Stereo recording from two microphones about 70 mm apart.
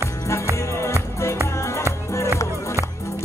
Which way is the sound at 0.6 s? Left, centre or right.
Left.